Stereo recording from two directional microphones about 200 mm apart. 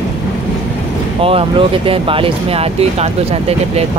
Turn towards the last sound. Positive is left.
turn(degrees=-30)  # may be behind; listen again after turning